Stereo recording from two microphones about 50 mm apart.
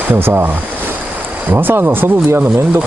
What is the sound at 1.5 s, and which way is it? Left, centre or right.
Speech, right.